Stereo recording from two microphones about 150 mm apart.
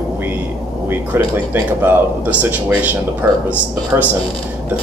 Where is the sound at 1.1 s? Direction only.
15° right (ahead or behind).